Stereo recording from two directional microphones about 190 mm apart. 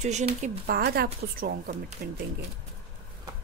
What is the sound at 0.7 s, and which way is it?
A woman's voice, 55° right (ahead or behind).